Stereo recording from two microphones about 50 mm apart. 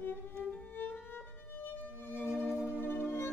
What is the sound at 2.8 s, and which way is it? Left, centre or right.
Music, left.